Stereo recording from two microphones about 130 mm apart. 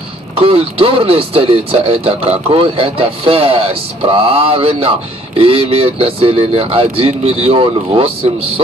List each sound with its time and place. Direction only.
0.4 s speech: 45° right (ahead or behind)